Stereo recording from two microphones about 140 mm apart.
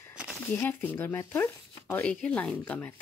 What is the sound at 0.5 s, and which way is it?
Speech, 15° left (ahead or behind).